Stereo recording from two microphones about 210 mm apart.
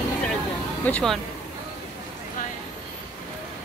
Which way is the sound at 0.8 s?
5° left (ahead or behind).